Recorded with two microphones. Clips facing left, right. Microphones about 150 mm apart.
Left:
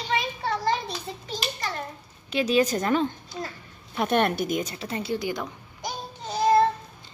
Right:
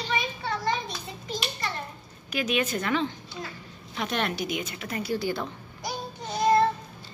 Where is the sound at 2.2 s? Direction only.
30° left (ahead or behind).